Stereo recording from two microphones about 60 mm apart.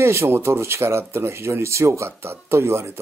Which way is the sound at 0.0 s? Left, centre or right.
Right.